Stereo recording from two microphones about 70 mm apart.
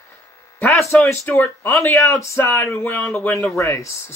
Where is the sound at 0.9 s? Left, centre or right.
Left.